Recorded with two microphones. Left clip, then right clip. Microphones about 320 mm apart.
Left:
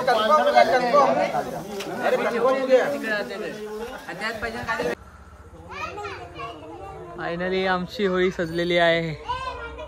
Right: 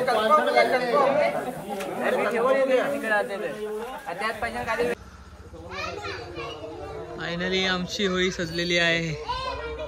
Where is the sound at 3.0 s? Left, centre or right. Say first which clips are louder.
Right 2 dB; centre.